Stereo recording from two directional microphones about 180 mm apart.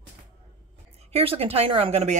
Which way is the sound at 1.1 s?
30° right (ahead or behind).